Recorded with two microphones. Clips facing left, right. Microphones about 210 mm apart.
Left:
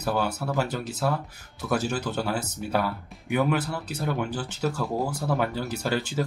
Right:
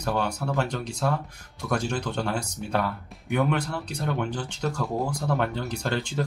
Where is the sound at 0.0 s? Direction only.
5° left (ahead or behind).